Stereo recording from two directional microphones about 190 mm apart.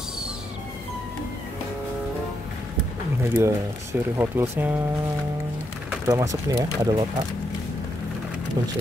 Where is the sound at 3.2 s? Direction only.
15° right (ahead or behind).